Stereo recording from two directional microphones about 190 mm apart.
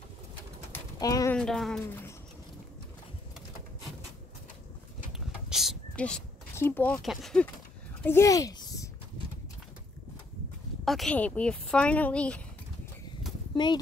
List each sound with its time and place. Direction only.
0.7 s bird: 20° left (ahead or behind)
1.3 s a woman's voice: 5° left (ahead or behind)
5.1 s a sound: centre (ahead or behind)
8.0 s speech: 15° left (ahead or behind)
10.9 s a woman's voice: 5° left (ahead or behind)